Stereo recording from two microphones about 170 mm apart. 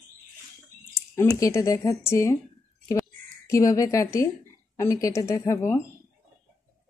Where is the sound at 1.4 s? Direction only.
20° left (ahead or behind).